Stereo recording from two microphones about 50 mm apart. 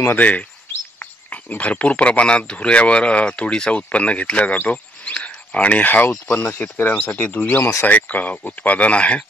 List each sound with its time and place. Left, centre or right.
0.2 s speech: left
7.0 s speech: left
7.4 s speech: left